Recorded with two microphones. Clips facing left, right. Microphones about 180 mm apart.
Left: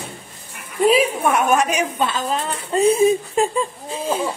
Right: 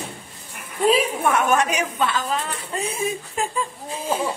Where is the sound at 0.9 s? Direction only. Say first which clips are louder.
Left 3 dB; 10° left (ahead or behind).